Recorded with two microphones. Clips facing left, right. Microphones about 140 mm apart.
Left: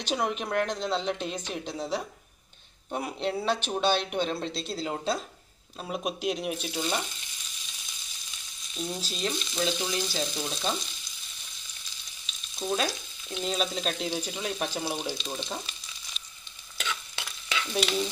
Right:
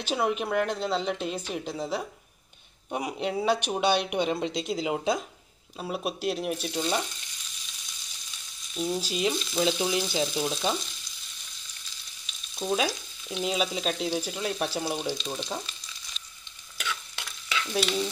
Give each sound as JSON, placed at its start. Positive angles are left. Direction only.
{"t": 0.0, "sound": "stir", "side_deg": -5}
{"t": 1.2, "sound": "speech", "side_deg": -5}
{"t": 5.8, "sound": "stir", "side_deg": -5}
{"t": 8.7, "sound": "stir", "side_deg": -5}
{"t": 9.6, "sound": "speech", "side_deg": -20}
{"t": 12.5, "sound": "stir", "side_deg": -5}
{"t": 17.7, "sound": "stir", "side_deg": 5}